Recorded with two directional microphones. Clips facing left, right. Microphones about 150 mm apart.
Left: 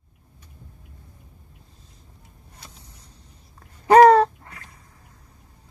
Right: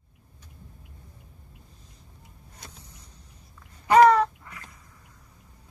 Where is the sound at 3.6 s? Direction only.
40° left (ahead or behind).